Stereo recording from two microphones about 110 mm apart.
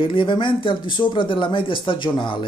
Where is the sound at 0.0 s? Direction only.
50° left (ahead or behind).